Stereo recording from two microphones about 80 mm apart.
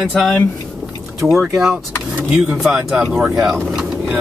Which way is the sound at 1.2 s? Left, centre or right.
Centre.